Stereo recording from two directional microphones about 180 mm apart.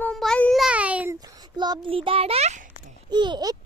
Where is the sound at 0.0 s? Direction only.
5° left (ahead or behind).